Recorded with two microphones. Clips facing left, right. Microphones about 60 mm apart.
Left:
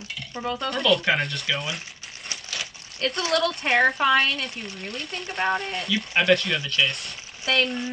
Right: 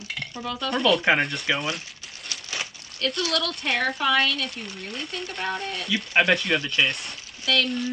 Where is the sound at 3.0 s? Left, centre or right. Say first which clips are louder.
Left 1 dB; left.